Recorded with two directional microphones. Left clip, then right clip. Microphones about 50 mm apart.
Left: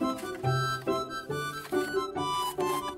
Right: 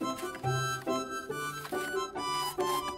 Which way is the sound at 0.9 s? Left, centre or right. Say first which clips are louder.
Left 2 dB; centre.